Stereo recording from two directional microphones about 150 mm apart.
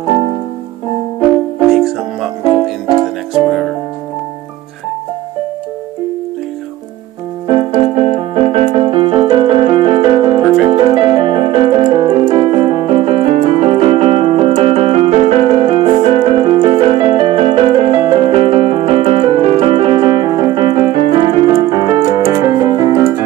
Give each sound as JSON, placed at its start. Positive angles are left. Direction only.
{"t": 2.9, "sound": "music", "side_deg": -35}
{"t": 7.7, "sound": "keyboard", "side_deg": -40}